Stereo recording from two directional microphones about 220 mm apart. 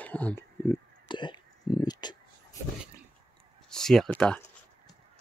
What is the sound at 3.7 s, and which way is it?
Speech, centre (ahead or behind).